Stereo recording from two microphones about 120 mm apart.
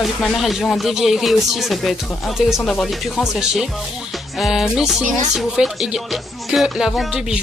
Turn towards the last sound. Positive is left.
turn(degrees=-5)  # may be behind; listen again after turning